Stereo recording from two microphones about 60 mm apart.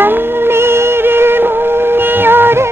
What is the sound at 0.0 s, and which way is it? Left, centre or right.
Music, right.